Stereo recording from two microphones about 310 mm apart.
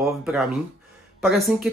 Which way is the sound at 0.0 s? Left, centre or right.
Centre.